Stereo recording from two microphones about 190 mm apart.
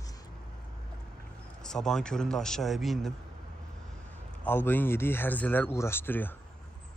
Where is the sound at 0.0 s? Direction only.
20° left (ahead or behind).